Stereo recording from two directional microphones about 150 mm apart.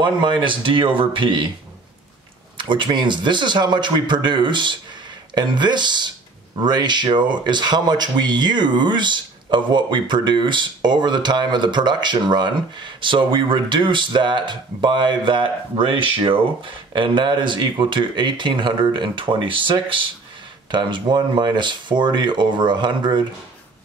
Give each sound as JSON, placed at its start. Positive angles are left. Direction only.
{"t": 0.0, "sound": "speech", "side_deg": -30}
{"t": 2.5, "sound": "speech", "side_deg": -30}